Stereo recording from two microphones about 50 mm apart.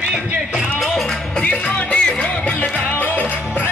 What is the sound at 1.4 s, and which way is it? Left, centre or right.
Music, centre.